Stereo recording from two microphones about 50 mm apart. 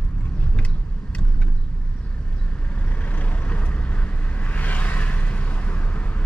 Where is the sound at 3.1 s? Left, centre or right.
Left.